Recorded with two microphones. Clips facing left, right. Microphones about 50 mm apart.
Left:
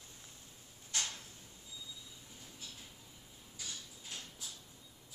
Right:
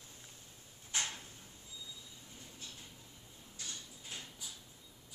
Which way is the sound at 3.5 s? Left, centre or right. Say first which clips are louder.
Even; centre.